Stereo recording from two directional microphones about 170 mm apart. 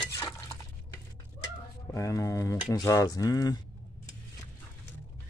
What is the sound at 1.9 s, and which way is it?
Speech, 20° left (ahead or behind).